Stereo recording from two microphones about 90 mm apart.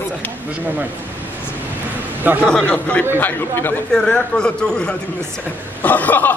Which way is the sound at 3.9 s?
10° left (ahead or behind).